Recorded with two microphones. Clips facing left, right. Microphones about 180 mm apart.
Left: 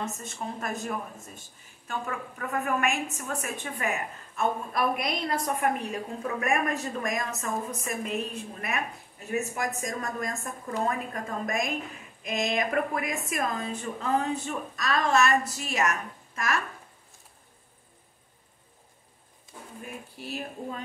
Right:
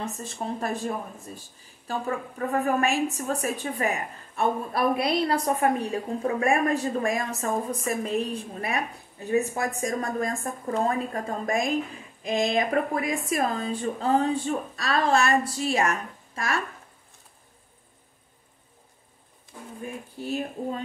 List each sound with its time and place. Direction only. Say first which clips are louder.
0.0 s a woman's voice: right 2 dB; 30° right (ahead or behind)
20.2 s speech: right 7 dB; 25° right (ahead or behind)